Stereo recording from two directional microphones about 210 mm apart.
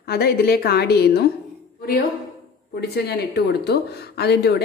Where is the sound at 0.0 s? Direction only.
50° left (ahead or behind).